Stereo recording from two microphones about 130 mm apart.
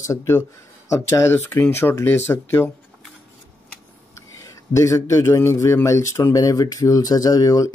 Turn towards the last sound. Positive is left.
turn(degrees=30)  # may be behind; listen again after turning